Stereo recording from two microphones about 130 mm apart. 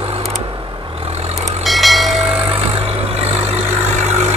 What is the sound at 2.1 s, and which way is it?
Vehicle, 50° right (ahead or behind).